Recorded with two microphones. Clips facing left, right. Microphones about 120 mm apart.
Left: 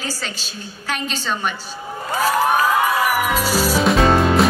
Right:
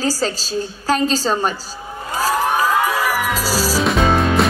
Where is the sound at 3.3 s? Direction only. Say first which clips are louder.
Left 1 dB; 40° right (ahead or behind).